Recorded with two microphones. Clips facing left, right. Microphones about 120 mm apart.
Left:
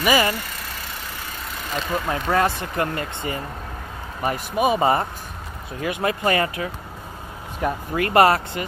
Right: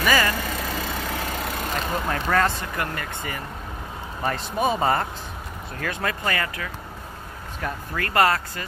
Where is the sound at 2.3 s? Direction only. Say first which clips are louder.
Left 2 dB; 20° left (ahead or behind).